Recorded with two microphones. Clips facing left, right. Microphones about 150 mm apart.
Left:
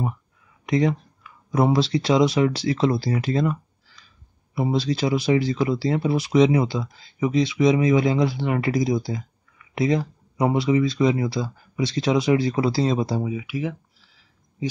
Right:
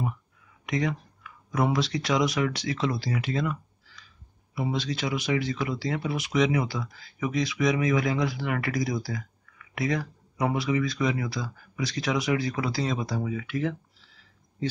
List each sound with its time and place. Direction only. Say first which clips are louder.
0.7 s speech: left 7 dB; 30° left (ahead or behind)
13.3 s speech: left 2 dB; 10° left (ahead or behind)